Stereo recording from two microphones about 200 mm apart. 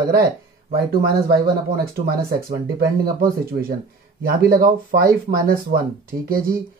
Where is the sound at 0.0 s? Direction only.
50° right (ahead or behind).